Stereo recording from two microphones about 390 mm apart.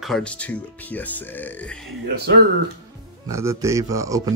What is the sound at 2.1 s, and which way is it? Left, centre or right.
Speech, right.